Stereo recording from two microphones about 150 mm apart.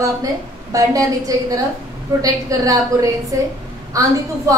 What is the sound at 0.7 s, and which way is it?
A woman's voice, 25° right (ahead or behind).